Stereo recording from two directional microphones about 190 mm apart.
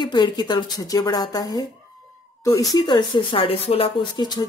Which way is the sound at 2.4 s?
15° left (ahead or behind).